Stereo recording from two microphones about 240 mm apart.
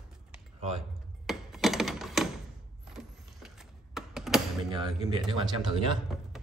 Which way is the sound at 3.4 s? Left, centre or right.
Centre.